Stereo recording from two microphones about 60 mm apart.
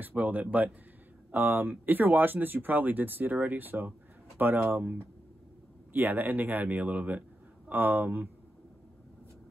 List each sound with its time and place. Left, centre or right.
0.0 s a man's voice: right